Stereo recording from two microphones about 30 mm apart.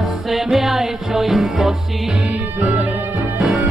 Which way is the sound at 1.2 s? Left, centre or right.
Centre.